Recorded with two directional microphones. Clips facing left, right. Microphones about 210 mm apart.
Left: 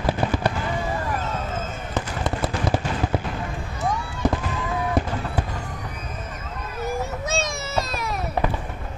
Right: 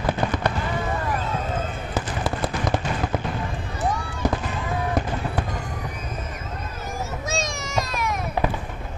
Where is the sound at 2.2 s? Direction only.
5° left (ahead or behind).